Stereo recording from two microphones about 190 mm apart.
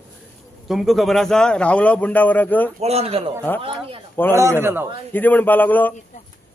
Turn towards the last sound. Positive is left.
turn(degrees=10)  # may be behind; listen again after turning